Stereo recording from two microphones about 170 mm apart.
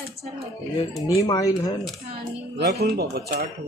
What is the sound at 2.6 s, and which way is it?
Speech, 75° right (ahead or behind).